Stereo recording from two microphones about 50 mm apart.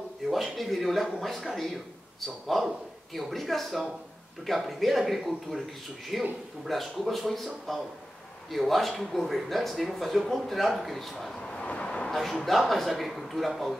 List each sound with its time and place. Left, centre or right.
0.3 s a man's voice: centre
11.5 s vehicle: centre
12.1 s a man's voice: centre